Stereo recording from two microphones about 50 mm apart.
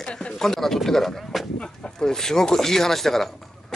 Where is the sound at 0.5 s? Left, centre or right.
Centre.